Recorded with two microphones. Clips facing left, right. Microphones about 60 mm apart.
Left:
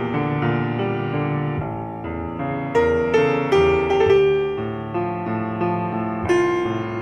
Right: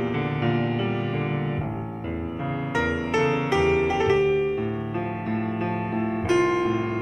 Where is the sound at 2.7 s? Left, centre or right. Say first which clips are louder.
Left 8 dB; left.